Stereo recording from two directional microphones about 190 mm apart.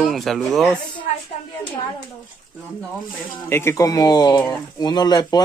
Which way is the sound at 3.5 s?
15° left (ahead or behind).